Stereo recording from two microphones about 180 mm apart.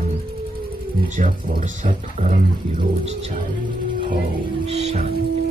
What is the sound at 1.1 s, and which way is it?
Speech, 50° right (ahead or behind).